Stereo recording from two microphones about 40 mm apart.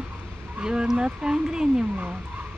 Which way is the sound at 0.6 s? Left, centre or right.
Right.